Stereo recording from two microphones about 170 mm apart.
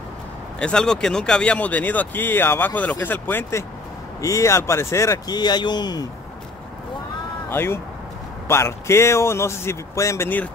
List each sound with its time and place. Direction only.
0.6 s speech: 5° left (ahead or behind); by 6.0 s 25° left (ahead or behind)
7.4 s speech: 15° left (ahead or behind)